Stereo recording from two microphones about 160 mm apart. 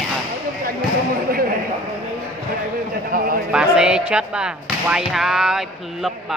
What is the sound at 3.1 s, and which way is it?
Speech, 65° right (ahead or behind).